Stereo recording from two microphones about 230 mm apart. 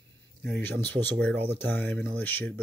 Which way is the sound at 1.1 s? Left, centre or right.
Centre.